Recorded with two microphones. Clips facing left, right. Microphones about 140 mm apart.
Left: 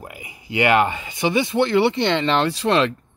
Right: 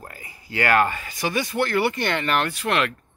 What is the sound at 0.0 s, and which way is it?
Speech, 15° left (ahead or behind).